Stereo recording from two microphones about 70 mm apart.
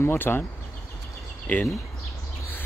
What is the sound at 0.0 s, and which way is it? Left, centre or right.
Speech, left.